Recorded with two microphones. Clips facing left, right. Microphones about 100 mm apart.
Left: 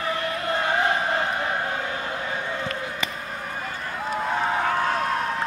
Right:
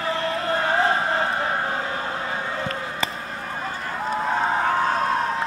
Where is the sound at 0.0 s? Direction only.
30° right (ahead or behind).